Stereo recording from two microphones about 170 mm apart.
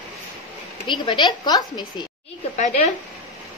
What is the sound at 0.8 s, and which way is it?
A woman's voice, 25° left (ahead or behind).